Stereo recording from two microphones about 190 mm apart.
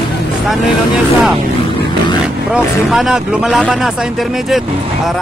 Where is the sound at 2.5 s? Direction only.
Centre (ahead or behind).